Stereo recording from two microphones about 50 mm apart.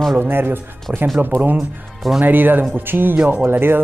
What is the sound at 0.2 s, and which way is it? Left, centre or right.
Speech, right.